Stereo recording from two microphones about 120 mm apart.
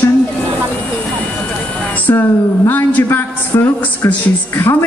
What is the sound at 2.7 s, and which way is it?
A man's voice, 15° left (ahead or behind).